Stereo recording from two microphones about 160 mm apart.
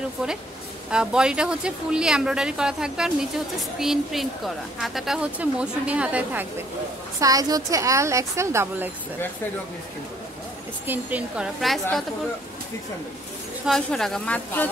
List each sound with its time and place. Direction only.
0.8 s a woman's voice: 5° right (ahead or behind)
7.2 s a woman's voice: 20° right (ahead or behind)
10.9 s speech: 10° right (ahead or behind)
13.7 s speech: 5° left (ahead or behind)